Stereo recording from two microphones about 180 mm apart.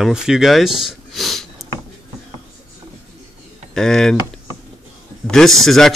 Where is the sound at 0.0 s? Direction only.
5° right (ahead or behind).